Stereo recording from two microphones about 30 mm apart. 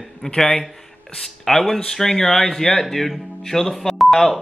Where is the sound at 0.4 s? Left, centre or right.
Centre.